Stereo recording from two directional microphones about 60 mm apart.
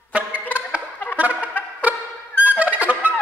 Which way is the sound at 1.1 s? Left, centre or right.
Right.